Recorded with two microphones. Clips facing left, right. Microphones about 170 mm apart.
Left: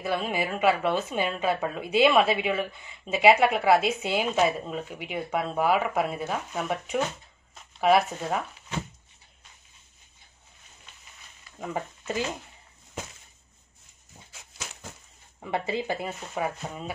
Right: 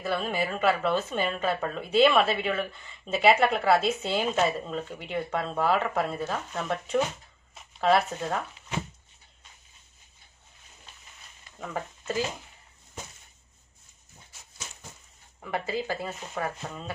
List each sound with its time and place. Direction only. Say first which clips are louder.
0.0 s a woman's voice: left 1 dB; 15° left (ahead or behind)
11.6 s speech: left 1 dB; 15° left (ahead or behind)
15.4 s speech: left 2 dB; 20° left (ahead or behind)